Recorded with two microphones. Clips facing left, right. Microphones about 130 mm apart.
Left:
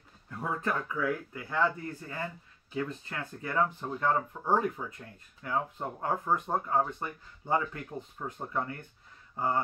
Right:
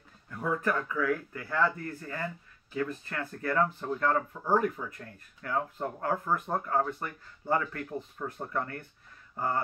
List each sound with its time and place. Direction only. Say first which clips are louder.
0.3 s speech: right 3 dB; 25° left (ahead or behind)